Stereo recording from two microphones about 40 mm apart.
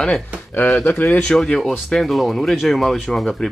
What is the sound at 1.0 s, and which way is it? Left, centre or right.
Speech, left.